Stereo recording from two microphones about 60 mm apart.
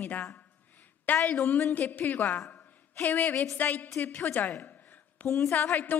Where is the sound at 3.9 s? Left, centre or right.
Left.